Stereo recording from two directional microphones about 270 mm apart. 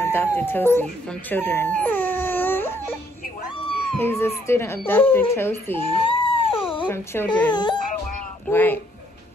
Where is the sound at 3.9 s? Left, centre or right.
Centre.